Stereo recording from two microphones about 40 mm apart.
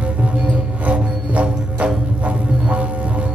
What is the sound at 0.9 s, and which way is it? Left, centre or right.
Music, right.